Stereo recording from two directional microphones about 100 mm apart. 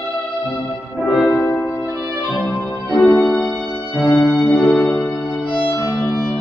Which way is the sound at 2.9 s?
20° left (ahead or behind).